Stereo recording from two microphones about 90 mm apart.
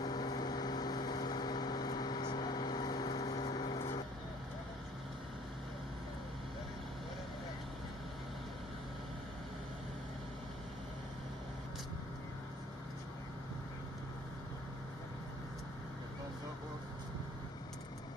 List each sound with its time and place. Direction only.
0.0 s vehicle: 50° left (ahead or behind)